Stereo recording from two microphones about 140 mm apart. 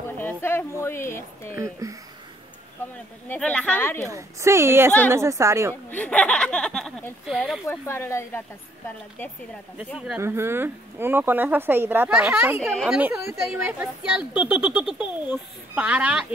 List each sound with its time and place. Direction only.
0.2 s a woman's voice: 15° left (ahead or behind)
1.6 s speech: 25° right (ahead or behind)
3.3 s a woman's voice: 10° left (ahead or behind)
4.1 s speech: 20° right (ahead or behind)
5.9 s a woman's voice: 10° left (ahead or behind)
7.6 s a woman's voice: 20° left (ahead or behind)
10.1 s speech: 20° right (ahead or behind)